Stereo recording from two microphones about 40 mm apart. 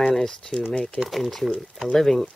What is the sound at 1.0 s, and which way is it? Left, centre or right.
Speech, centre.